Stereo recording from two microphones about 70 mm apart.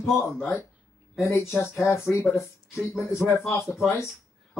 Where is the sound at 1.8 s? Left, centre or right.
Left.